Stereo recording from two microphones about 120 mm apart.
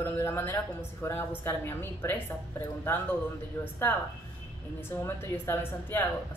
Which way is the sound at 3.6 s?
15° left (ahead or behind).